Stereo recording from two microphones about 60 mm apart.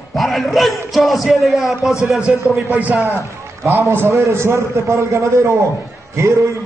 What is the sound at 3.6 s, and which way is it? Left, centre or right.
Speech, right.